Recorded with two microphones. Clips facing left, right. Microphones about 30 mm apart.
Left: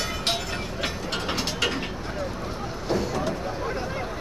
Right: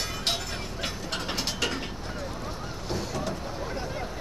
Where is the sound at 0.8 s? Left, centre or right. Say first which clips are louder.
Left 3 dB; centre.